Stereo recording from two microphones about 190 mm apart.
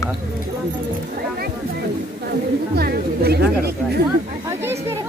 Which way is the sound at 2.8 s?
55° right (ahead or behind).